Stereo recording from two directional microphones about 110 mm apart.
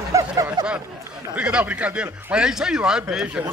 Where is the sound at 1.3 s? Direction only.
10° right (ahead or behind).